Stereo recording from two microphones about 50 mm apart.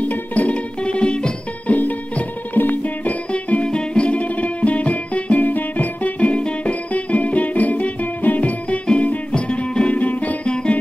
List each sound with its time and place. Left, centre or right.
0.0 s music: left
1.8 s music: left
10.5 s music: centre